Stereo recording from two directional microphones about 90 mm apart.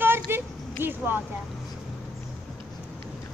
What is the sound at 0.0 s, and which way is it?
Vehicle, 25° right (ahead or behind).